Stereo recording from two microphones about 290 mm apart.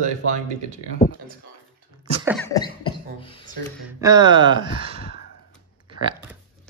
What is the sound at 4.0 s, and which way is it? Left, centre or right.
Speech, centre.